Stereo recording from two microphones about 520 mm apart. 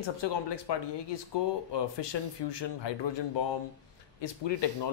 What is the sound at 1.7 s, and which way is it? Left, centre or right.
Speech, left.